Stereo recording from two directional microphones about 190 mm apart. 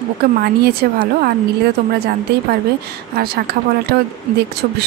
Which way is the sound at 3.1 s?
55° right (ahead or behind).